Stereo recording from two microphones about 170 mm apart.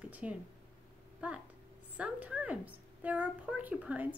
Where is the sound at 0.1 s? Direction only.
10° right (ahead or behind).